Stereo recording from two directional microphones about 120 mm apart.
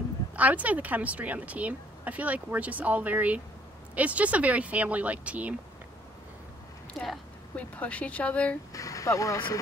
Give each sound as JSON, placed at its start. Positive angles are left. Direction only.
{"t": 0.4, "sound": "a woman's voice", "side_deg": -10}
{"t": 7.0, "sound": "speech", "side_deg": 10}
{"t": 8.7, "sound": "speech", "side_deg": 30}